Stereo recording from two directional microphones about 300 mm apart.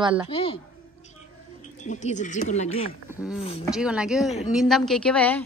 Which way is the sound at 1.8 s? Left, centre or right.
Left.